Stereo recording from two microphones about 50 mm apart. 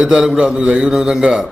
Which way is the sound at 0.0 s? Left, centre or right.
Centre.